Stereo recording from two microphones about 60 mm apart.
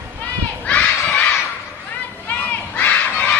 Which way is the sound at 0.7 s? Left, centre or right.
Left.